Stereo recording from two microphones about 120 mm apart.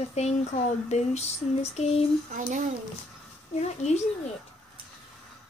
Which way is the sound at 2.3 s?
90° right.